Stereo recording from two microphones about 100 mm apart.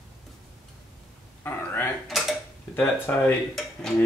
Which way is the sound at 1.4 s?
20° left (ahead or behind).